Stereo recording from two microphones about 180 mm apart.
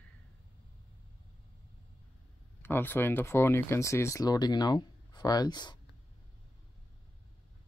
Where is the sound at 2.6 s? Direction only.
10° left (ahead or behind).